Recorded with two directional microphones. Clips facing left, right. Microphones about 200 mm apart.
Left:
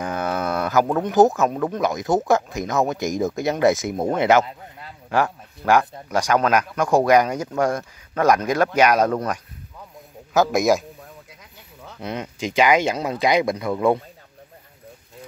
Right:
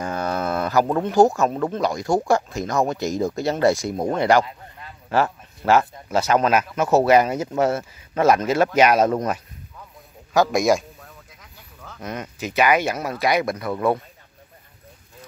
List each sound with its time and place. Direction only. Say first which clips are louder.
0.0 s a sound: even; centre (ahead or behind)
1.0 s speech: even; 20° left (ahead or behind)
1.3 s a man's voice: even; centre (ahead or behind)
1.7 s speech: even; 20° left (ahead or behind)
5.8 s speech: even; 5° right (ahead or behind)
10.3 s a man's voice: even; centre (ahead or behind)
11.8 s speech: left 2 dB; 15° left (ahead or behind)